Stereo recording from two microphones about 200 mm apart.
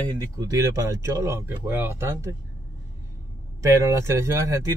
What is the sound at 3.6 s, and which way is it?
Speech, 15° right (ahead or behind).